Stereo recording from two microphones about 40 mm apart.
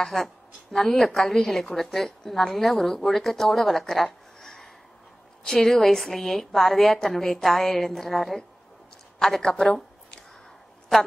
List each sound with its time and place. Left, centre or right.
0.0 s a woman's voice: centre
9.4 s a woman's voice: centre